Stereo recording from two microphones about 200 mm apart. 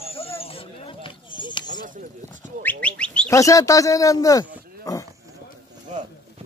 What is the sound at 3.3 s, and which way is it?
Speech, 15° left (ahead or behind).